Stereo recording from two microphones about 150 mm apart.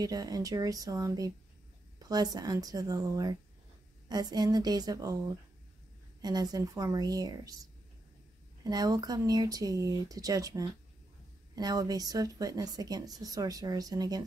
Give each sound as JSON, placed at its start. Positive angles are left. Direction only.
{"t": 0.0, "sound": "speech", "side_deg": -25}
{"t": 6.2, "sound": "speech", "side_deg": -25}
{"t": 8.6, "sound": "speech", "side_deg": -25}